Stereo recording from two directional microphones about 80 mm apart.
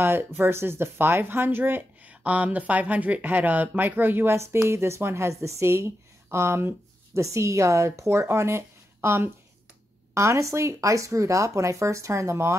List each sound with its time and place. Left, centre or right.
0.0 s speech: right